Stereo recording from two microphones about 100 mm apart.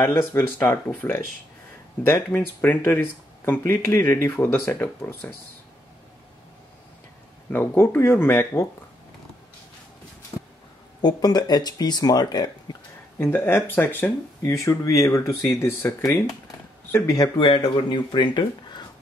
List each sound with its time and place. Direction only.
0.0 s speech: 25° left (ahead or behind)
2.3 s speech: 15° left (ahead or behind)
7.4 s speech: 20° left (ahead or behind)
11.0 s speech: 45° left (ahead or behind)
13.2 s speech: 25° left (ahead or behind)
14.4 s speech: 30° left (ahead or behind)
17.0 s speech: 35° left (ahead or behind)
17.4 s speech: 55° left (ahead or behind)